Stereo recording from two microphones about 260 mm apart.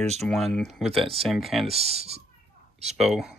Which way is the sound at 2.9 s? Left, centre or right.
Centre.